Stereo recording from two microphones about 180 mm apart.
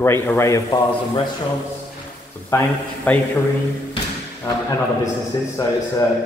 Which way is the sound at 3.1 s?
10° left (ahead or behind).